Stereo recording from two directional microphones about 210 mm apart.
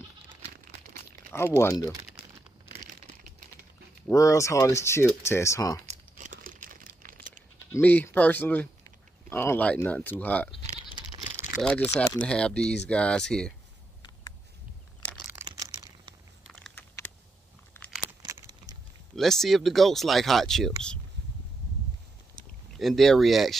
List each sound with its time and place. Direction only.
1.3 s speech: 10° left (ahead or behind)
4.1 s speech: 15° left (ahead or behind)
5.9 s crumpling: 35° right (ahead or behind)
7.7 s speech: 10° left (ahead or behind)
11.6 s speech: 5° left (ahead or behind)
15.4 s a sound: 20° right (ahead or behind)
16.4 s typing: centre (ahead or behind)
18.0 s crumpling: 15° right (ahead or behind)
19.1 s speech: centre (ahead or behind)
22.8 s speech: centre (ahead or behind)